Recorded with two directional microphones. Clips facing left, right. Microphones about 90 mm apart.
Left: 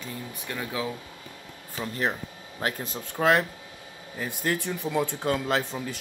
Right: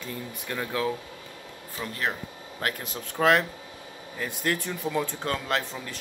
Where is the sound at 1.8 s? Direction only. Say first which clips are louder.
Left 2 dB; 25° left (ahead or behind).